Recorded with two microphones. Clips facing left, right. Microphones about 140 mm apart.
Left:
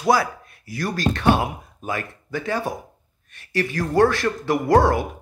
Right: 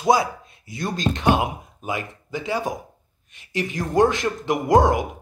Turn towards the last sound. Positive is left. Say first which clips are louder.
# even
turn(degrees=-15)  # may be behind; listen again after turning